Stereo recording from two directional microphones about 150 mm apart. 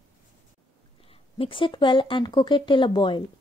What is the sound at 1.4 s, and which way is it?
Speech, 35° left (ahead or behind).